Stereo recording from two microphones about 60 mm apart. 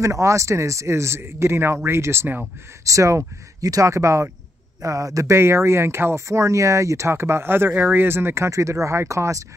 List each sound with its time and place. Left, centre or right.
0.0 s speech: right
2.8 s speech: right
4.8 s a man's voice: right
5.4 s speech: right
6.2 s speech: right
8.5 s speech: right